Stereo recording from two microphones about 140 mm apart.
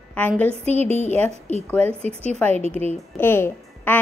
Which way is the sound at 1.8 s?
50° right (ahead or behind).